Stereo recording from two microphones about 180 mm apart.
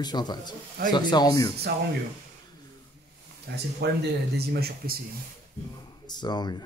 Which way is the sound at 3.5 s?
65° right (ahead or behind).